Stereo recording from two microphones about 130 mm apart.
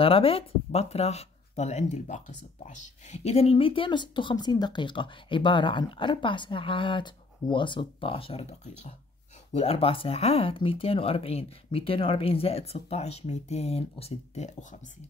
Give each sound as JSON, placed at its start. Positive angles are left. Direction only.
{"t": 0.0, "sound": "speech", "side_deg": 45}